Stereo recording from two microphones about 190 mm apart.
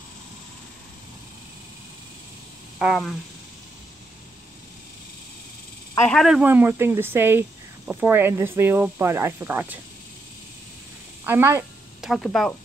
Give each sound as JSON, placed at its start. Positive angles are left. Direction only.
{"t": 2.8, "sound": "speech", "side_deg": 0}
{"t": 6.0, "sound": "speech", "side_deg": 0}
{"t": 11.2, "sound": "speech", "side_deg": -10}
{"t": 12.0, "sound": "speech", "side_deg": 0}